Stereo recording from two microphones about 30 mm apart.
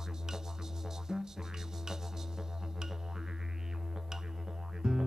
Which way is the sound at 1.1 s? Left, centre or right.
Right.